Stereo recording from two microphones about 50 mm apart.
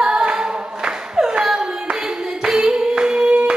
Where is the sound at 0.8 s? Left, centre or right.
Centre.